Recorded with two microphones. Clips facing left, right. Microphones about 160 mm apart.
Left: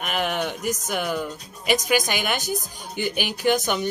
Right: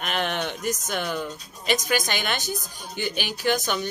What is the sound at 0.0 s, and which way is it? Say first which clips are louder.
Speech: left 2 dB; 5° left (ahead or behind).